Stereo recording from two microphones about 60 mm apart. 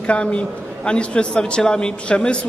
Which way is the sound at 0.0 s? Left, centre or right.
Left.